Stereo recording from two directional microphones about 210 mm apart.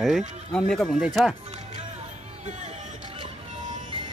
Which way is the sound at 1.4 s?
30° right (ahead or behind).